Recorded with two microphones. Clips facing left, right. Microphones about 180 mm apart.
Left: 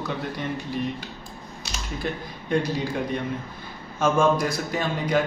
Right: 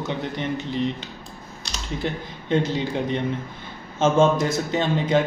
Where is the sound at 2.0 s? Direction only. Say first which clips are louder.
Right 1 dB; 20° right (ahead or behind).